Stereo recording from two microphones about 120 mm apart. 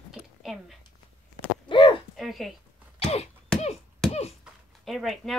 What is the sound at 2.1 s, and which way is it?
Speech, centre (ahead or behind).